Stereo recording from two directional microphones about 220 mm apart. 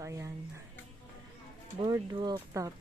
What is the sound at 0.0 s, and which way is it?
Speech, 15° right (ahead or behind).